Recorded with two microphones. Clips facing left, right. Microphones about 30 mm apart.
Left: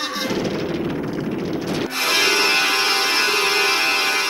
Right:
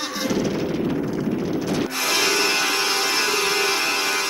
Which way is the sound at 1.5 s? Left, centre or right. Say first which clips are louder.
Even; left.